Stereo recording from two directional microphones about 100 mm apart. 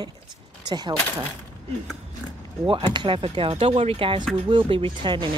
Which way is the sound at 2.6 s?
55° right (ahead or behind).